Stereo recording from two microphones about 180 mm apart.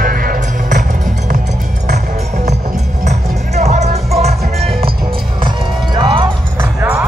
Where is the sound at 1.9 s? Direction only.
45° right (ahead or behind).